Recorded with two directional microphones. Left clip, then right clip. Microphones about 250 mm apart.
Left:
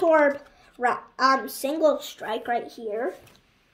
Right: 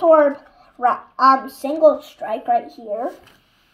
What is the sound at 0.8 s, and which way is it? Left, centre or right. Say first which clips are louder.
A child's voice: right 7 dB; left.